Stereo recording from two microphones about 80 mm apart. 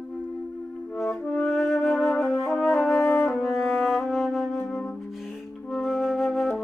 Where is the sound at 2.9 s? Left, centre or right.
Left.